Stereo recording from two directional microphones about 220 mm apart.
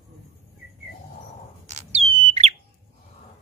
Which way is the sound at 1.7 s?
30° right (ahead or behind).